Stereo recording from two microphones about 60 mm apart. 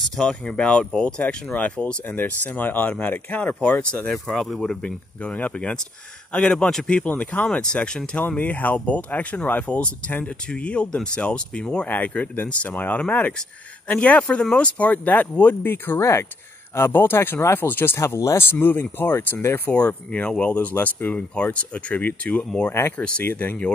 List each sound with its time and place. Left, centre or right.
0.1 s speech: centre
4.1 s speech: centre
4.8 s speech: left
7.1 s speech: left
8.4 s speech: left
16.0 s speech: left
16.7 s speech: left
17.9 s speech: left
20.1 s speech: centre
22.7 s speech: left
23.3 s speech: left